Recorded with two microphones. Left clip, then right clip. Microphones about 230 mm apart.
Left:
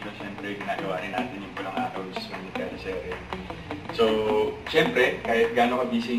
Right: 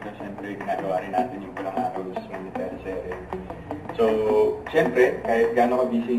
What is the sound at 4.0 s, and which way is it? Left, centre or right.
Speech, centre.